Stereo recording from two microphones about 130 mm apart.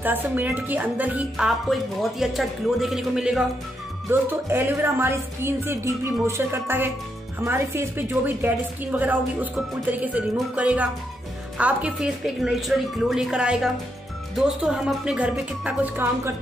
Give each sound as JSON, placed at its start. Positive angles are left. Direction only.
{"t": 0.0, "sound": "a woman's voice", "side_deg": -15}
{"t": 4.1, "sound": "a woman's voice", "side_deg": -15}